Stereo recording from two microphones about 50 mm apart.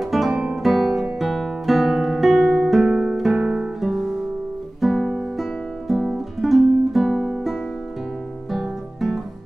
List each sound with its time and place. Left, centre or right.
0.0 s guitar: centre
2.8 s music: centre
3.3 s guitar: centre
3.8 s music: centre
8.5 s music: centre